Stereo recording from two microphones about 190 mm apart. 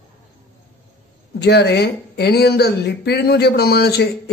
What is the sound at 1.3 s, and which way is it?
Speech, 60° left (ahead or behind).